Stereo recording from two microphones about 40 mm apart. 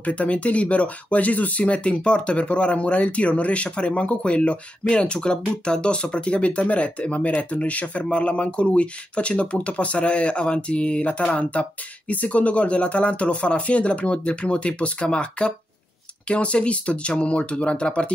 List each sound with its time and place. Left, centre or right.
0.0 s speech: left